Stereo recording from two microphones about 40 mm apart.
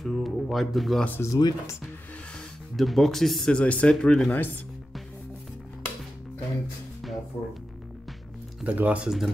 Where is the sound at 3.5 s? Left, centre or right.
Left.